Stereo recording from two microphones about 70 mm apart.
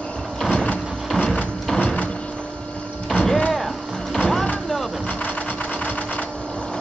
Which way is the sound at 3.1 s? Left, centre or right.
Centre.